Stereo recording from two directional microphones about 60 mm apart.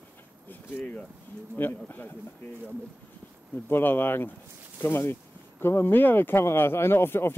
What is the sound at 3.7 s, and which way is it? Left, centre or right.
Speech, left.